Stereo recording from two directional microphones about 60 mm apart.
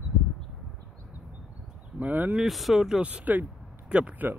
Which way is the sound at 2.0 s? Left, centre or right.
Right.